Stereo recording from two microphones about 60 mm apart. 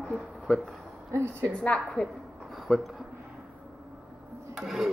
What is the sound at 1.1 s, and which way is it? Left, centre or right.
Speech, right.